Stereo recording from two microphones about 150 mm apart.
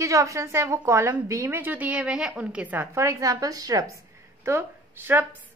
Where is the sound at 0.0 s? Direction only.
20° right (ahead or behind).